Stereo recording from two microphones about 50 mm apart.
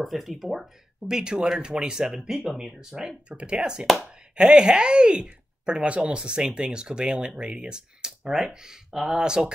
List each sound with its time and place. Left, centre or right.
0.0 s speech: centre
1.0 s speech: centre
3.0 s speech: right